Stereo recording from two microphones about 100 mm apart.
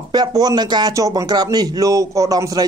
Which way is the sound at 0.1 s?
45° right (ahead or behind).